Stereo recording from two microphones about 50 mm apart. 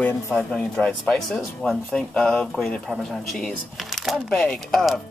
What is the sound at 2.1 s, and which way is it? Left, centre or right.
Speech, centre.